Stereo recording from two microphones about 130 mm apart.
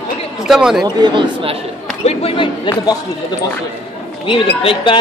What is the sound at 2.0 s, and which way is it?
Speech, 45° left (ahead or behind).